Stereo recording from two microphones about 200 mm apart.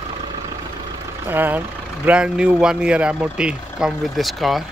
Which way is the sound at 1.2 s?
10° right (ahead or behind).